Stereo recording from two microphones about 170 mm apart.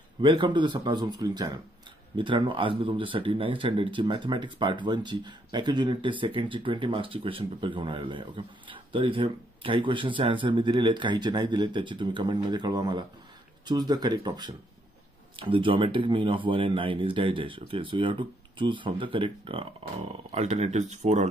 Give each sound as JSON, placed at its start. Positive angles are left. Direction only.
{"t": 0.2, "sound": "speech", "side_deg": -30}